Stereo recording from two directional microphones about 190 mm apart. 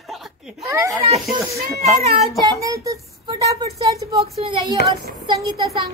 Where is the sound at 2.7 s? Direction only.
20° right (ahead or behind).